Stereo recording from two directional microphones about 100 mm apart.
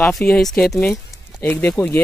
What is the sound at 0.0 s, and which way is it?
Speech, 5° left (ahead or behind).